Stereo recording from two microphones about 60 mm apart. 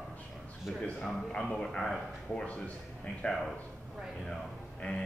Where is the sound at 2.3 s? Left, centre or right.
Left.